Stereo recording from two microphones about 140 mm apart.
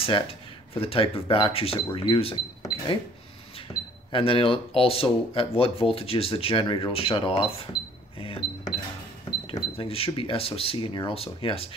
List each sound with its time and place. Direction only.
0.0 s speech: 40° left (ahead or behind)
3.7 s a sound: 20° left (ahead or behind)
4.1 s speech: 40° left (ahead or behind)
9.5 s speech: 40° left (ahead or behind)